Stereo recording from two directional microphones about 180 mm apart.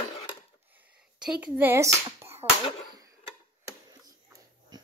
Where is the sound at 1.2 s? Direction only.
10° right (ahead or behind).